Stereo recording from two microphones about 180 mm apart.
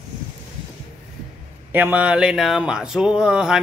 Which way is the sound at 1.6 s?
10° right (ahead or behind).